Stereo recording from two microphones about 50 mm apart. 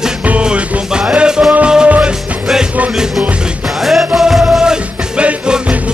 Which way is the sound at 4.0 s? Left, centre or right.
Centre.